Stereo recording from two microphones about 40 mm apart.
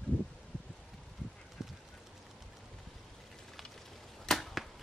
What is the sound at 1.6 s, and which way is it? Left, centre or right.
Duck, centre.